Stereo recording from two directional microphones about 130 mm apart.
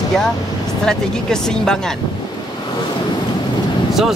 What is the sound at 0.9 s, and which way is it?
Speech, 5° left (ahead or behind).